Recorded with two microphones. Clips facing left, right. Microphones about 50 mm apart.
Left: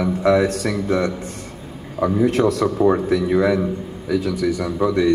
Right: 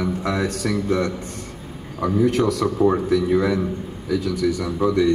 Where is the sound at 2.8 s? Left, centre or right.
Centre.